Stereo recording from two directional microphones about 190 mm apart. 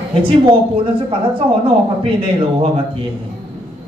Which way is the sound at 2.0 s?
30° right (ahead or behind).